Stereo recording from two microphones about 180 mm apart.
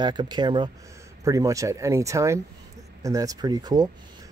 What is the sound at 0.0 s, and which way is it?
Speech, 25° right (ahead or behind).